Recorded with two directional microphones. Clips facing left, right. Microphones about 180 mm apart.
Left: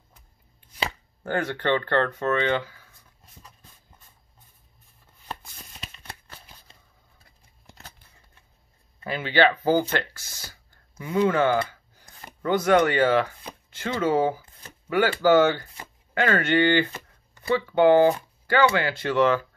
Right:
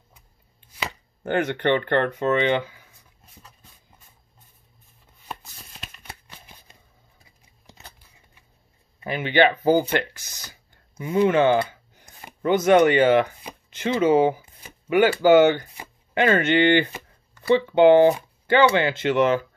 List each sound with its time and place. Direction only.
1.2 s speech: 20° right (ahead or behind)
5.3 s shuffling cards: 5° right (ahead or behind)
9.0 s speech: 15° right (ahead or behind)